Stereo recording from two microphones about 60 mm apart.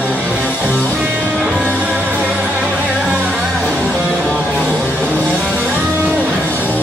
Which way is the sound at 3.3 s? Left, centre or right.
Left.